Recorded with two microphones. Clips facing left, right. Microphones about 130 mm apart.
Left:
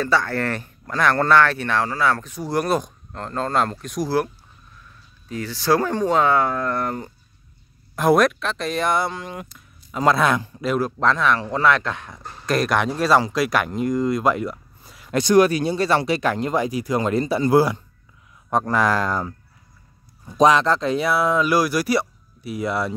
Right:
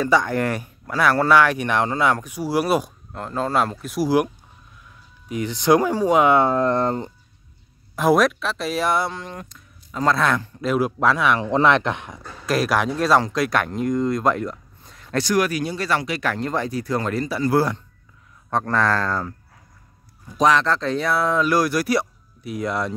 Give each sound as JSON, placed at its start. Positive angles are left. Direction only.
{"t": 0.0, "sound": "speech", "side_deg": -15}
{"t": 5.3, "sound": "speech", "side_deg": -20}
{"t": 7.9, "sound": "speech", "side_deg": 0}
{"t": 10.8, "sound": "speech", "side_deg": -10}
{"t": 12.4, "sound": "speech", "side_deg": 0}
{"t": 15.2, "sound": "speech", "side_deg": 25}